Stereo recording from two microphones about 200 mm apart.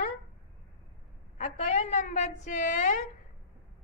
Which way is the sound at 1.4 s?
40° left (ahead or behind).